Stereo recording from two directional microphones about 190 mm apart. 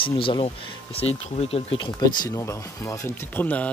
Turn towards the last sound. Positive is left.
turn(degrees=10)  # may be behind; listen again after turning